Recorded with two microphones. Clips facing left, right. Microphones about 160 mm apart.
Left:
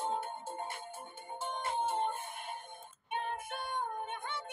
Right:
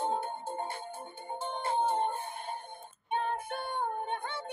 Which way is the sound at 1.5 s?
35° right (ahead or behind).